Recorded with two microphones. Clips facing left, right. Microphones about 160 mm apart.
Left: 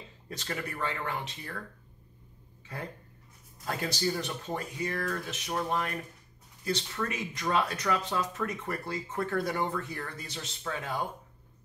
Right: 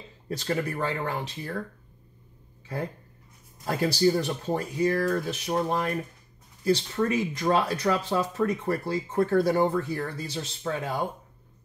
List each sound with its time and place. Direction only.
0.3 s speech: 30° right (ahead or behind)
3.6 s speech: 30° right (ahead or behind)